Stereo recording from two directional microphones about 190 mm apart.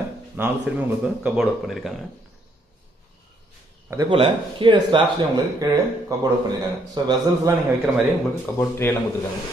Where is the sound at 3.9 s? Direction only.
25° right (ahead or behind).